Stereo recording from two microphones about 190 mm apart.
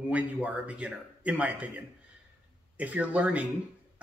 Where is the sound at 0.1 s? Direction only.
5° right (ahead or behind).